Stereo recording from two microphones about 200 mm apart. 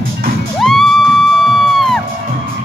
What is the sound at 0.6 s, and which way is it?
Music, centre (ahead or behind).